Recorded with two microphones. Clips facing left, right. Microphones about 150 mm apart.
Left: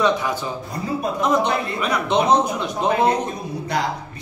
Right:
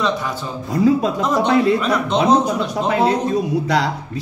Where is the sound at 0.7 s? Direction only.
90° right.